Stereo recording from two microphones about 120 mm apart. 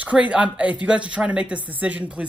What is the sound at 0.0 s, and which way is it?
Speech, 10° right (ahead or behind).